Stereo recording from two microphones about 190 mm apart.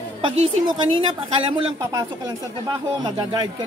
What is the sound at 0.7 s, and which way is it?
Speech, 25° right (ahead or behind).